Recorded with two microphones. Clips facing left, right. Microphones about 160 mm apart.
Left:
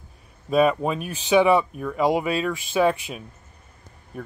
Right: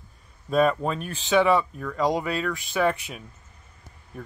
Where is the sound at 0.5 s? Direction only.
10° left (ahead or behind).